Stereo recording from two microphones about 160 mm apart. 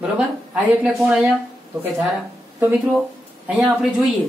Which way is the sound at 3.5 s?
10° right (ahead or behind).